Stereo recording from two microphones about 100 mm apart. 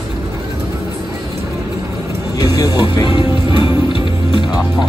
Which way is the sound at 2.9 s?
50° left (ahead or behind).